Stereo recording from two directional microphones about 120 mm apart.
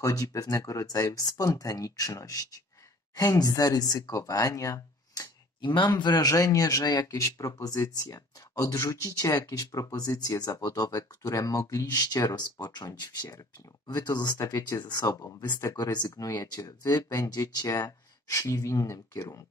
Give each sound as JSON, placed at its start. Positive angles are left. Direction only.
{"t": 0.0, "sound": "speech", "side_deg": 30}